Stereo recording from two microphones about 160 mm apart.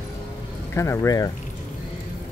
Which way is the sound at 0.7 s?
15° left (ahead or behind).